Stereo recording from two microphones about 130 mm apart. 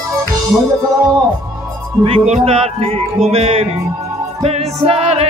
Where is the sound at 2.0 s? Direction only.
55° right (ahead or behind).